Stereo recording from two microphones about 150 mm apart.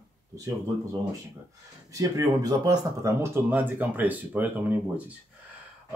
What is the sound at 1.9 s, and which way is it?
Speech, 20° right (ahead or behind).